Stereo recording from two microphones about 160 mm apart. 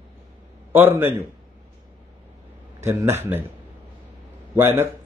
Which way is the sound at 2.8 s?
15° right (ahead or behind).